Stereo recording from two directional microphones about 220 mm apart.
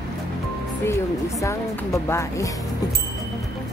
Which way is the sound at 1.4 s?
15° left (ahead or behind).